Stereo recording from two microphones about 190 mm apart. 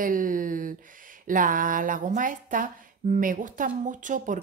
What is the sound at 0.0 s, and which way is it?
Speech, 45° right (ahead or behind).